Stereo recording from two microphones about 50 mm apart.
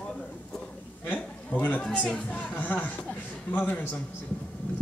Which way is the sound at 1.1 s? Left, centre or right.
Left.